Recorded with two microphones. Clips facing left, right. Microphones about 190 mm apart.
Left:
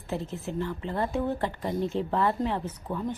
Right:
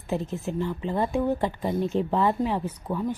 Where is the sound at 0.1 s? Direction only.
15° right (ahead or behind).